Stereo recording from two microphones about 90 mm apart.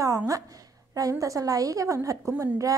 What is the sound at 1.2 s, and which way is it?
Speech, 40° right (ahead or behind).